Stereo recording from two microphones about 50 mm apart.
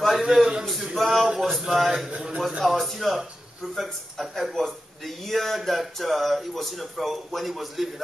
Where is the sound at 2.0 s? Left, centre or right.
Centre.